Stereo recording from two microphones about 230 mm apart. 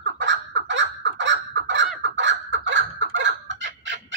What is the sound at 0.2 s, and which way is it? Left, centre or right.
Fowl, right.